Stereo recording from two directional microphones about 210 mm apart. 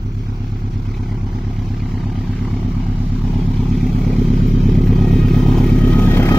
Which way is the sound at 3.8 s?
Centre (ahead or behind).